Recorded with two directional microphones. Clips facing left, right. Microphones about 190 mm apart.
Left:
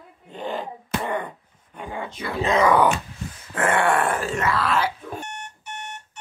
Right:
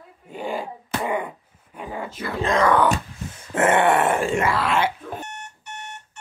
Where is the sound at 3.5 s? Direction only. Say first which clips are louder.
Right 3 dB; 25° right (ahead or behind).